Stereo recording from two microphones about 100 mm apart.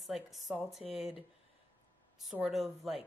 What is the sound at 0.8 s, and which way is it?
Speech, 80° left.